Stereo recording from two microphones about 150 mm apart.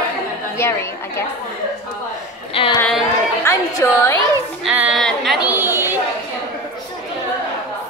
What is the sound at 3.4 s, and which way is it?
Speech, 20° left (ahead or behind).